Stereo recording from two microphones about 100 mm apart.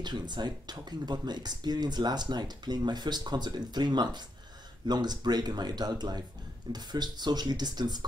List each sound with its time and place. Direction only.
0.0 s speech: 45° right (ahead or behind)